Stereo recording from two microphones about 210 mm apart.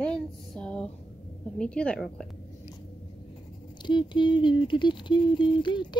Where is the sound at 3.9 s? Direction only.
20° left (ahead or behind).